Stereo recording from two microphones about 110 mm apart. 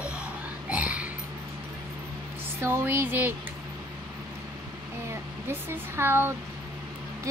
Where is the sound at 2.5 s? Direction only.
25° right (ahead or behind).